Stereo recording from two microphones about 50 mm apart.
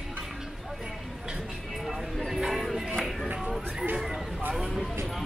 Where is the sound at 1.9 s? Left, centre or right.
Centre.